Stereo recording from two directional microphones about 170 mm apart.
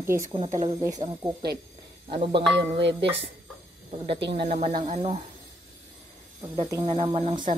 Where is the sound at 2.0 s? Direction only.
35° right (ahead or behind).